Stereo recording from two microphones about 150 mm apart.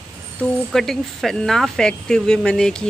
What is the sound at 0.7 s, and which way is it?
Speech, centre (ahead or behind).